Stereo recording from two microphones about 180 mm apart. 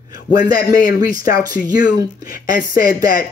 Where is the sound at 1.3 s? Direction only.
20° right (ahead or behind).